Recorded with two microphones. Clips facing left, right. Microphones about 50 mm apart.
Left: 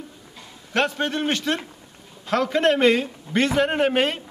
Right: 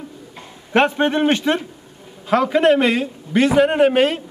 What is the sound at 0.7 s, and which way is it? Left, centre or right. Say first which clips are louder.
Speech: right 7 dB; right.